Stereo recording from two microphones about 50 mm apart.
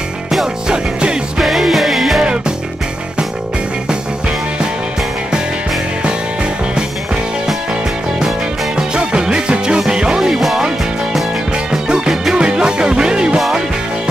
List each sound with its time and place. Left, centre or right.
1.4 s music: centre
8.7 s music: centre
11.7 s music: centre